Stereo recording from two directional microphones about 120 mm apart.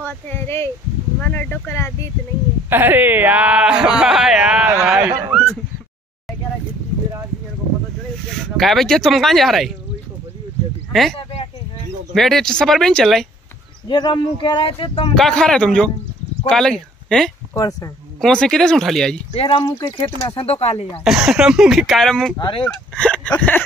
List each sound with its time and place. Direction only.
0.0 s speech: 20° left (ahead or behind)
2.7 s speech: 15° right (ahead or behind)
5.3 s a sound: centre (ahead or behind)
8.4 s speech: centre (ahead or behind)
10.9 s speech: centre (ahead or behind)
13.8 s speech: 40° left (ahead or behind)
15.1 s speech: 5° left (ahead or behind)
17.6 s speech: 30° left (ahead or behind)
18.2 s speech: 5° left (ahead or behind)
19.3 s speech: 45° left (ahead or behind)
21.0 s speech: 5° right (ahead or behind)
22.4 s speech: 45° left (ahead or behind)
22.7 s speech: 10° left (ahead or behind)